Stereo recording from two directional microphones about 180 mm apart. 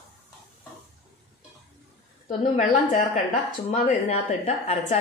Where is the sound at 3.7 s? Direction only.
40° left (ahead or behind).